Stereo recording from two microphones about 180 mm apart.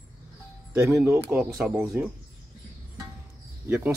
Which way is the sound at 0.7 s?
15° right (ahead or behind).